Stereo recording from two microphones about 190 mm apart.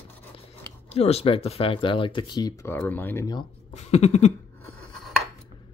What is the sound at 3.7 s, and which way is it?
Speech, 35° left (ahead or behind).